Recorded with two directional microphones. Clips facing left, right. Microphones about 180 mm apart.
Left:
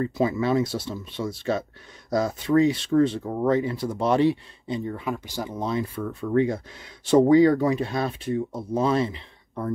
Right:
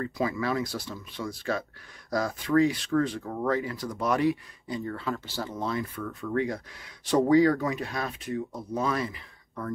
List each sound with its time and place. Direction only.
0.0 s speech: 25° left (ahead or behind)